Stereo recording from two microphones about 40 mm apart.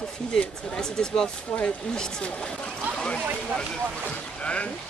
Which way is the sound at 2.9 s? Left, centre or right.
Left.